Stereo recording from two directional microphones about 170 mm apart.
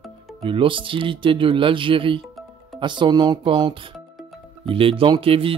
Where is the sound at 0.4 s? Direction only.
30° right (ahead or behind).